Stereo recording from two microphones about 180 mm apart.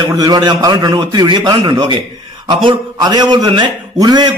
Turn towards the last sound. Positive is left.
turn(degrees=-20)  # may be behind; listen again after turning